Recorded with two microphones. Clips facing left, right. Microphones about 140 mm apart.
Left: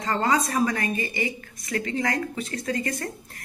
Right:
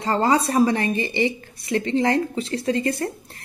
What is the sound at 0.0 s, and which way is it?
A woman's voice, 30° right (ahead or behind).